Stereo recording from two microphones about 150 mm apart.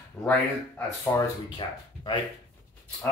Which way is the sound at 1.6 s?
30° left (ahead or behind).